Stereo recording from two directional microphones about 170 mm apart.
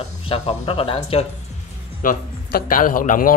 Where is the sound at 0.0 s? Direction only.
35° left (ahead or behind).